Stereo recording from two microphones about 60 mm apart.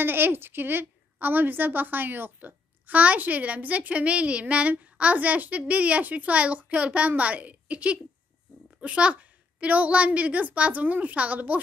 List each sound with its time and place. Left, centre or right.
0.0 s a woman's voice: right